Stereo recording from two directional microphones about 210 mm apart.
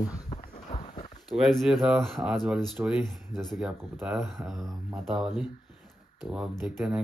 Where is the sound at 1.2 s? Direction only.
Centre (ahead or behind).